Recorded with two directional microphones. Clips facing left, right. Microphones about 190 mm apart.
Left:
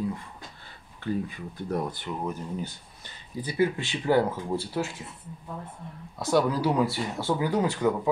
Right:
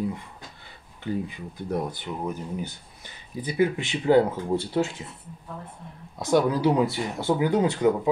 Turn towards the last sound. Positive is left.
turn(degrees=-20)  # may be behind; listen again after turning